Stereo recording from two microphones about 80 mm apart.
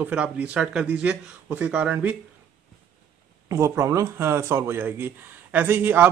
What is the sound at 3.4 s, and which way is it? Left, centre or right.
A man's voice, right.